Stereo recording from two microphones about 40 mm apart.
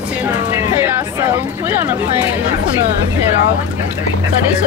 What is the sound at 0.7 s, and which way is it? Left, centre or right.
Speech, right.